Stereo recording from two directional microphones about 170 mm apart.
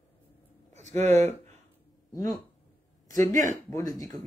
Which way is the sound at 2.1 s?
15° left (ahead or behind).